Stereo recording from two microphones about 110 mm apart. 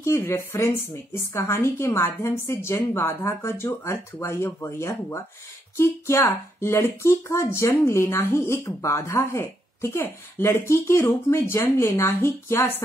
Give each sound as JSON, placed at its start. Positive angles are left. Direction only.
{"t": 0.0, "sound": "speech", "side_deg": 25}